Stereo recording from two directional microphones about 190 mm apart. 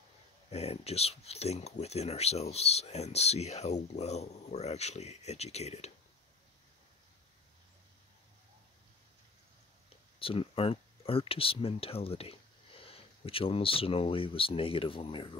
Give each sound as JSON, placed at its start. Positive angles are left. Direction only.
{"t": 0.5, "sound": "speech", "side_deg": 35}
{"t": 10.1, "sound": "speech", "side_deg": 30}